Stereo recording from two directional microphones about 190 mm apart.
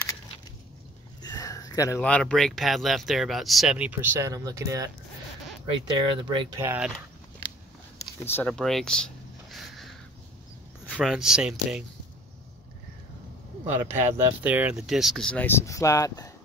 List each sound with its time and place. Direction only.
1.2 s speech: 20° left (ahead or behind); by 4.9 s 15° right (ahead or behind)
6.2 s speech: 25° right (ahead or behind)
6.6 s speech: 10° right (ahead or behind)
8.3 s a sound: 5° left (ahead or behind)
10.9 s speech: centre (ahead or behind)
13.7 s speech: 15° right (ahead or behind); by 16.3 s 15° left (ahead or behind)